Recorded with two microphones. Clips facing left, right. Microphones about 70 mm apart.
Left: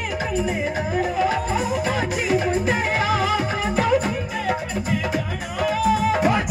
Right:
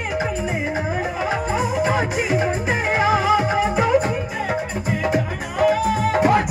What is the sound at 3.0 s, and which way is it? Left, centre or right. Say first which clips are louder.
Music: right 4 dB; right.